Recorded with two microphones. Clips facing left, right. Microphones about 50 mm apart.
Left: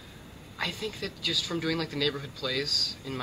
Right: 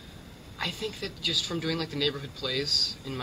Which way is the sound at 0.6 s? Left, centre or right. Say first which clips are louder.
Even; centre.